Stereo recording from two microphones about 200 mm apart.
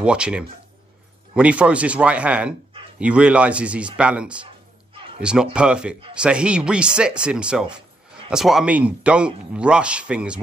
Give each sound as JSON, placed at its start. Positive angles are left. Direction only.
{"t": 0.0, "sound": "a man's voice", "side_deg": -5}
{"t": 4.9, "sound": "a sound", "side_deg": -25}
{"t": 5.2, "sound": "a man's voice", "side_deg": -5}